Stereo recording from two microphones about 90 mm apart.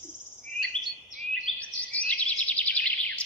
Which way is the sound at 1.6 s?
15° left (ahead or behind).